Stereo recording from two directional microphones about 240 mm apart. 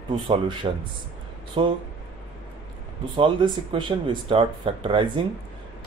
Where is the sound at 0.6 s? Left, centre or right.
Right.